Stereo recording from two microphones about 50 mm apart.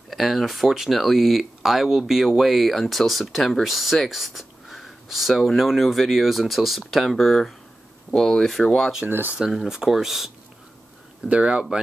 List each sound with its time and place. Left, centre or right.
0.1 s speech: centre
9.0 s speech: right
9.5 s speech: centre
11.2 s speech: right